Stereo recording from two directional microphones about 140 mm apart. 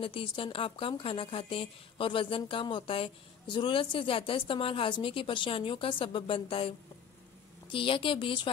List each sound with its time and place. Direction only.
0.0 s a woman's voice: 40° left (ahead or behind)
7.7 s a woman's voice: 40° left (ahead or behind)